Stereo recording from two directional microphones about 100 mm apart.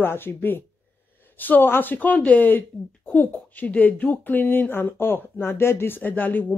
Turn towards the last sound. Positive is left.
turn(degrees=20)  # may be behind; listen again after turning